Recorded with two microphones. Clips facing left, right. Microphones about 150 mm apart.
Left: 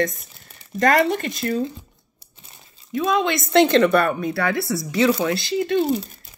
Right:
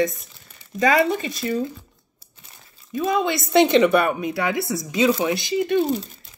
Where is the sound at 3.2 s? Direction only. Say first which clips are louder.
Even; 10° right (ahead or behind).